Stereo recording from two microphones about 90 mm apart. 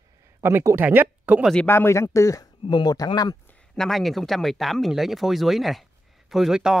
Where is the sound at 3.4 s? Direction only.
10° left (ahead or behind).